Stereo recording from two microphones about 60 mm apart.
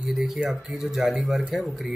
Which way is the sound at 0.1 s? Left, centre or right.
Centre.